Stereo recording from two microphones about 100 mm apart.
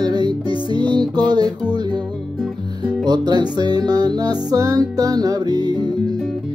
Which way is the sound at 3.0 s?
45° right (ahead or behind).